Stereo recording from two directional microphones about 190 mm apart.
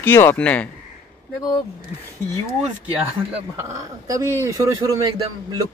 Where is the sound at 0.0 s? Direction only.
10° left (ahead or behind).